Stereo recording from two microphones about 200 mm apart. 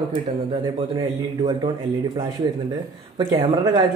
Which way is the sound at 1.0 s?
20° right (ahead or behind).